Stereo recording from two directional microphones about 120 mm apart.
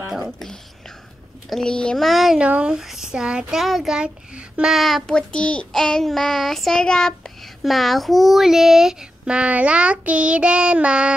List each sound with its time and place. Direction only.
0.4 s whispering: 5° left (ahead or behind)
1.5 s speech: 5° left (ahead or behind); by 11.1 s 10° right (ahead or behind)